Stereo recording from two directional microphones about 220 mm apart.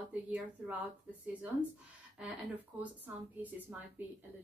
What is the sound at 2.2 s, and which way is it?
A woman's voice, 5° right (ahead or behind).